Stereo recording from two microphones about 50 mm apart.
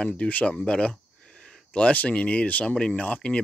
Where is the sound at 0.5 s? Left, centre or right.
Centre.